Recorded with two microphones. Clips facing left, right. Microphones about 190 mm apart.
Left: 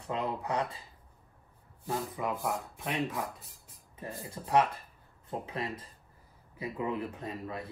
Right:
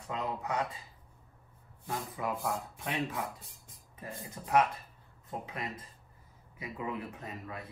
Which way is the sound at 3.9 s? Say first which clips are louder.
Left 3 dB; 30° left (ahead or behind).